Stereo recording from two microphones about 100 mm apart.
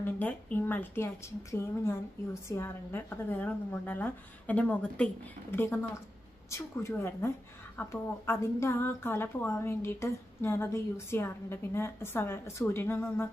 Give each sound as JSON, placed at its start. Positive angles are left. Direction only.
{"t": 0.0, "sound": "a woman's voice", "side_deg": 15}
{"t": 5.5, "sound": "speech", "side_deg": 25}